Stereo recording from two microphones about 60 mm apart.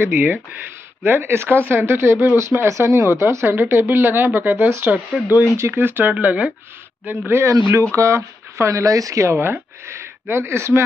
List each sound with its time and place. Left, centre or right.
0.0 s speech: right
2.3 s speech: right
2.8 s speech: right
5.2 s speech: centre
5.7 s speech: right
6.1 s speech: right
7.1 s speech: right
7.9 s speech: right
9.4 s speech: right